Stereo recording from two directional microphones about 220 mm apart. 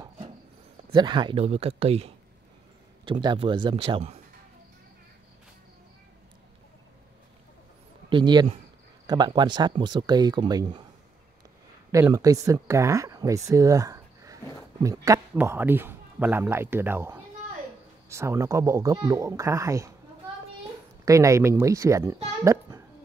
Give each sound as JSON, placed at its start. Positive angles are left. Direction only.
{"t": 0.9, "sound": "speech", "side_deg": -20}
{"t": 8.1, "sound": "speech", "side_deg": -20}
{"t": 11.9, "sound": "a child's voice", "side_deg": -15}
{"t": 21.0, "sound": "speech", "side_deg": -15}